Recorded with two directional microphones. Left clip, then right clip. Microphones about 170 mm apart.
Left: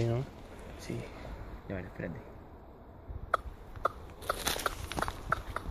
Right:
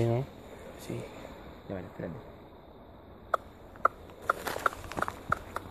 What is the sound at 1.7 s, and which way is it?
Speech, centre (ahead or behind).